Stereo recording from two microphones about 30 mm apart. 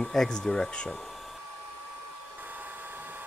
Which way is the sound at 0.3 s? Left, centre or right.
Left.